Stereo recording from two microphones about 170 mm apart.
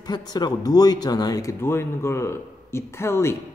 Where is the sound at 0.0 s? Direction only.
25° left (ahead or behind).